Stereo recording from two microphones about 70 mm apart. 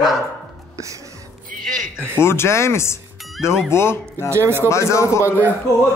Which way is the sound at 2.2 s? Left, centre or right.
Left.